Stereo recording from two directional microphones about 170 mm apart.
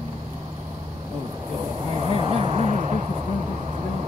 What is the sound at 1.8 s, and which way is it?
Vehicle, 35° right (ahead or behind).